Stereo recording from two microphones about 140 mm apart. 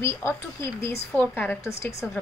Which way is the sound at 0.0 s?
20° left (ahead or behind).